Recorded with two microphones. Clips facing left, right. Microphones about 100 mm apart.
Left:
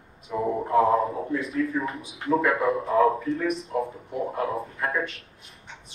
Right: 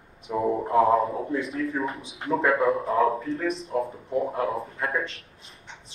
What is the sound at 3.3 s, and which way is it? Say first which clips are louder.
Speech: left 1 dB; 30° right (ahead or behind).